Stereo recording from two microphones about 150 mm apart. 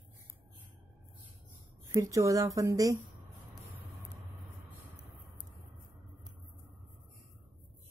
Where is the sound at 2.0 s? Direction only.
20° right (ahead or behind).